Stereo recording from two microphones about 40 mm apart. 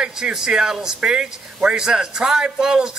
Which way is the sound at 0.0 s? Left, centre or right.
Centre.